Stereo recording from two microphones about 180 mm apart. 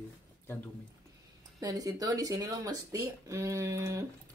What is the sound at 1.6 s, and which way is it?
Speech, 20° right (ahead or behind).